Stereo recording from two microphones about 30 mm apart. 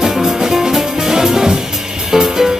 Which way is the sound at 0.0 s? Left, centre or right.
Centre.